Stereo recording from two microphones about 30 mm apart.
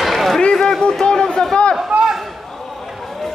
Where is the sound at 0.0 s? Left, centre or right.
Centre.